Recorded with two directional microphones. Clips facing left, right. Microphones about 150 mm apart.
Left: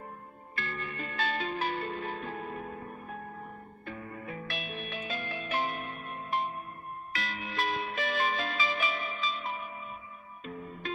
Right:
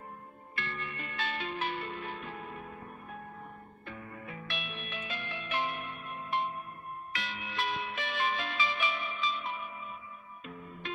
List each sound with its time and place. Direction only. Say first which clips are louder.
0.6 s music: left 2 dB; 40° left (ahead or behind)
3.8 s music: left 4 dB; 40° left (ahead or behind)